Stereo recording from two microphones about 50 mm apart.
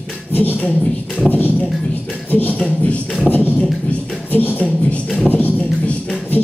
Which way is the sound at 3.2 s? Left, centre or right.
Left.